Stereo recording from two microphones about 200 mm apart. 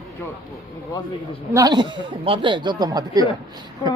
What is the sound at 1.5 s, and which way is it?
Speech, 20° right (ahead or behind).